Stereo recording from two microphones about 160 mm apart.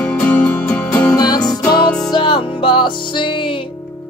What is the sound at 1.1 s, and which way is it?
Music, 25° left (ahead or behind).